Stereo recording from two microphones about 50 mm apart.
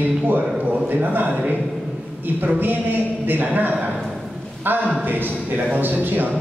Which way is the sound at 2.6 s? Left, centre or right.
Right.